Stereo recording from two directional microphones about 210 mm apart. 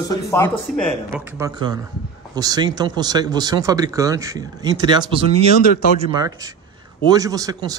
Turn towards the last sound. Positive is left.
turn(degrees=-15)  # may be behind; listen again after turning